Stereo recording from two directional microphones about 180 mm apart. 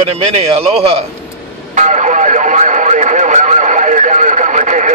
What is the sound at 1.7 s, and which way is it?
Radio, 40° right (ahead or behind).